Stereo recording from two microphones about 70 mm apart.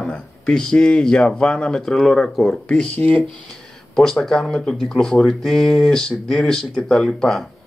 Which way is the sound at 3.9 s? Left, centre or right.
Centre.